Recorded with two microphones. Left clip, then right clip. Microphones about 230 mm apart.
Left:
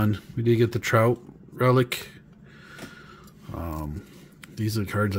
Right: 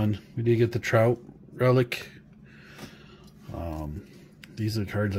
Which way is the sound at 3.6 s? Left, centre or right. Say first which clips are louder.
Left 1 dB; centre.